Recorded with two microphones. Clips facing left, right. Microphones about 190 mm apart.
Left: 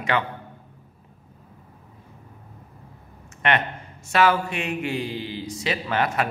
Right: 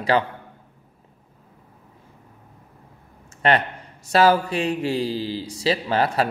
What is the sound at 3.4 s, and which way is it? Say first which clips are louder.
A man's voice: right 3 dB; 35° right (ahead or behind).